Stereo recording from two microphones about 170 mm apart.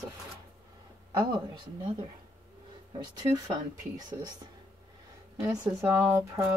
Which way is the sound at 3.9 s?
25° right (ahead or behind).